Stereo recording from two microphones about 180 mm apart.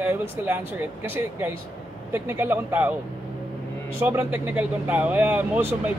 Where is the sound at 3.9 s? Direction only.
10° right (ahead or behind).